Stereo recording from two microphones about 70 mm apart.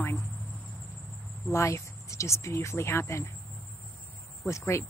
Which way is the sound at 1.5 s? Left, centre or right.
Left.